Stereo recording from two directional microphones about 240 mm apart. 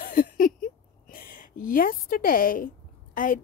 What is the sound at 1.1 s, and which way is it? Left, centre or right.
A woman's voice, left.